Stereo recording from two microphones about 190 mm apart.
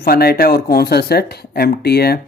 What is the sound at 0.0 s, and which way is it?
Speech, 55° left (ahead or behind).